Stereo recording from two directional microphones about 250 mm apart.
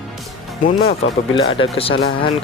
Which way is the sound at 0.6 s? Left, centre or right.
Left.